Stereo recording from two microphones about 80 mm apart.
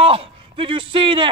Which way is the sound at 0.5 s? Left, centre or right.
Right.